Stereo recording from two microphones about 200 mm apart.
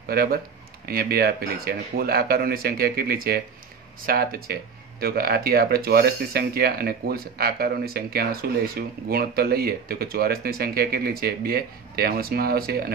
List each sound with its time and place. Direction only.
0.1 s speech: 50° right (ahead or behind)